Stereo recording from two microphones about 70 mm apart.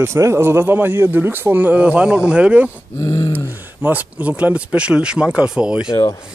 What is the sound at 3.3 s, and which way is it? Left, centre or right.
Speech, right.